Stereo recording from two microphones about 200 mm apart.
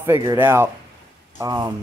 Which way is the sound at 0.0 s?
15° right (ahead or behind).